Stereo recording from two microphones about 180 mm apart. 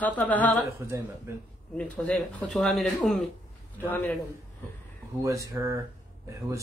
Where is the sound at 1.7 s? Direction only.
5° left (ahead or behind).